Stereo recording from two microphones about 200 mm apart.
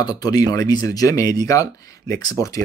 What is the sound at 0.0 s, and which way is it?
Speech, 20° left (ahead or behind).